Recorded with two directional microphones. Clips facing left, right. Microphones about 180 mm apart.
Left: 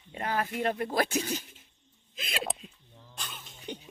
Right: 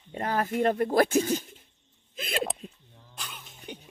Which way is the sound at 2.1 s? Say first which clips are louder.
Right 6 dB; 50° right (ahead or behind).